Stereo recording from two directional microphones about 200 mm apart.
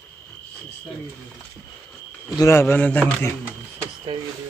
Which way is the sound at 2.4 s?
10° left (ahead or behind).